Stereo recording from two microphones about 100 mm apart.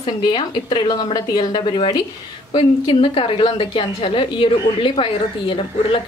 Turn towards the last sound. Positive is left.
turn(degrees=60)  # may be behind; listen again after turning